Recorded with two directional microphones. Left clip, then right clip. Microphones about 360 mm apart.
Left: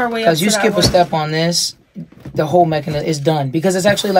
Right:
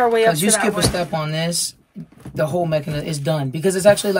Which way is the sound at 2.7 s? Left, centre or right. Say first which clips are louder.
Left 4 dB; centre.